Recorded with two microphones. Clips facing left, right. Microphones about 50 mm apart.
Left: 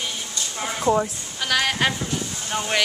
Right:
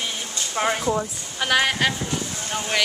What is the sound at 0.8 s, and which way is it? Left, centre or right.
Speech, centre.